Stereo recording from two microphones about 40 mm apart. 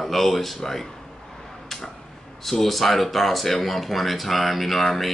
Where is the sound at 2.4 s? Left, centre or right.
Centre.